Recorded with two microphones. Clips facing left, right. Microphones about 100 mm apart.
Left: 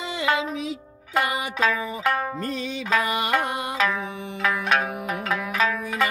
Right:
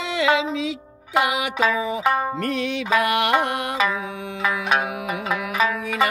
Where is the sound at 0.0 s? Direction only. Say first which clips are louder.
Right 6 dB; 75° right (ahead or behind).